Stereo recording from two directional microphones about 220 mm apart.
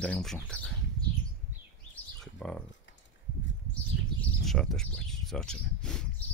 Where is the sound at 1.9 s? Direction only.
5° left (ahead or behind).